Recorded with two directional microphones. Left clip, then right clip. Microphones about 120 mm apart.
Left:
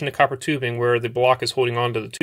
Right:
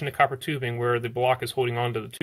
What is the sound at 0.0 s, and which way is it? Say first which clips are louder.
Speech: left 4 dB; 40° left (ahead or behind).